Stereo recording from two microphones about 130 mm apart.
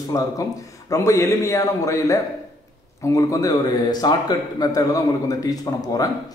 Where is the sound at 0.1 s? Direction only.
25° left (ahead or behind).